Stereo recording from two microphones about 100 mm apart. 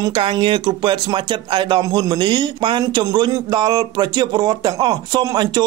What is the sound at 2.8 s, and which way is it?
Speech, 40° right (ahead or behind).